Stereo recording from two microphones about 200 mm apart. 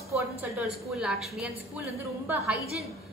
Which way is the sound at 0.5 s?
5° right (ahead or behind).